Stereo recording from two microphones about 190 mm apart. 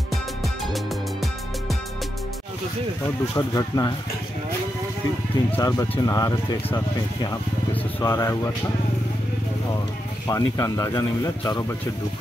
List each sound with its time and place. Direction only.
0.1 s music: centre (ahead or behind)
3.3 s speech: 20° left (ahead or behind)
5.6 s speech: 20° left (ahead or behind)
7.7 s vehicle: 15° left (ahead or behind)
10.2 s speech: 15° left (ahead or behind)